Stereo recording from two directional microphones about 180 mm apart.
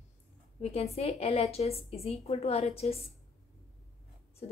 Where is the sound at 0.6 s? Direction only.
35° left (ahead or behind).